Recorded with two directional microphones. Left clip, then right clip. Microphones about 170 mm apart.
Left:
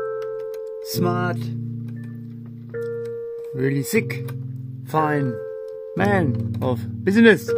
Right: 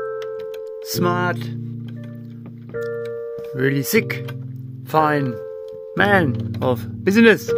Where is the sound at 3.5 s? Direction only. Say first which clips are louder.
Right 3 dB; 15° left (ahead or behind).